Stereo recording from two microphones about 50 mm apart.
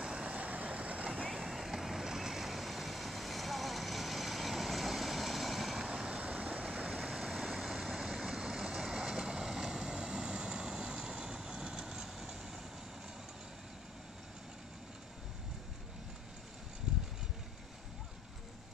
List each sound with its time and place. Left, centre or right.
0.0 s vehicle: centre
1.3 s vehicle: centre
5.9 s vehicle: centre
6.9 s vehicle: centre